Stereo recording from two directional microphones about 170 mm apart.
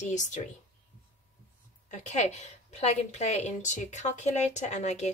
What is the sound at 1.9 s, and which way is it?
A woman's voice, 40° left (ahead or behind).